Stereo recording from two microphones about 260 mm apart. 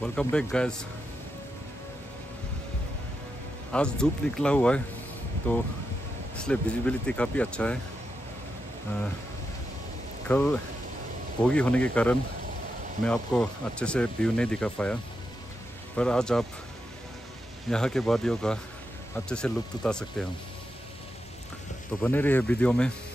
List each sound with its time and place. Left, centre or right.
0.0 s speech: centre
3.7 s speech: centre
10.2 s speech: centre
16.0 s speech: centre
17.6 s speech: centre
22.0 s speech: centre